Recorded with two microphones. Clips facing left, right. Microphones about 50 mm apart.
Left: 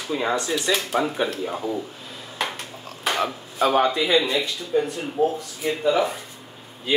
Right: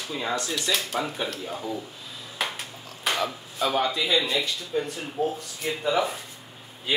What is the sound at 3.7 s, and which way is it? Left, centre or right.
Speech, left.